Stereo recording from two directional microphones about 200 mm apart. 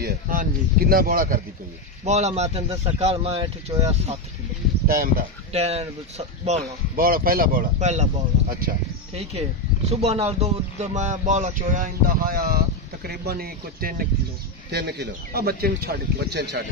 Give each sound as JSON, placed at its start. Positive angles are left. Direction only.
{"t": 0.0, "sound": "speech", "side_deg": -45}
{"t": 2.0, "sound": "speech", "side_deg": -35}
{"t": 4.8, "sound": "speech", "side_deg": -50}
{"t": 5.5, "sound": "speech", "side_deg": -30}
{"t": 7.0, "sound": "speech", "side_deg": -45}
{"t": 14.7, "sound": "speech", "side_deg": -60}